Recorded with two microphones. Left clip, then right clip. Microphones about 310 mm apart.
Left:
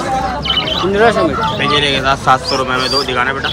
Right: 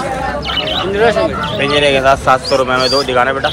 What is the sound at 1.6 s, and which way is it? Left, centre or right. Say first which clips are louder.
Speech: right 4 dB; centre.